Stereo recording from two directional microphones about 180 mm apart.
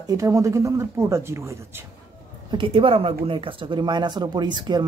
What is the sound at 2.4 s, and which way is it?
A woman's voice, 30° right (ahead or behind).